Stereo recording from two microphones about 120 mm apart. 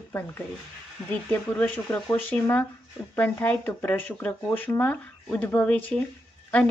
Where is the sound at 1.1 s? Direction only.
15° left (ahead or behind).